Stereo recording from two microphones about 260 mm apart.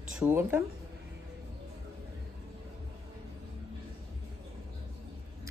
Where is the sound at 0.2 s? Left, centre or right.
Centre.